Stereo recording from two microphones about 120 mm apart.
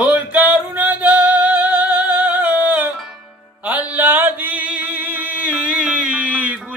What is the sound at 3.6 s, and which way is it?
Chant, 10° right (ahead or behind).